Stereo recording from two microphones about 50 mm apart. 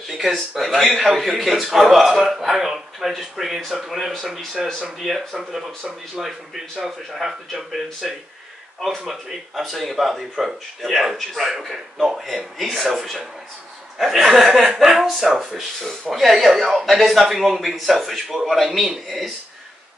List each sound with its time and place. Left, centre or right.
0.1 s speech: centre
14.6 s speech: centre
14.9 s speech: centre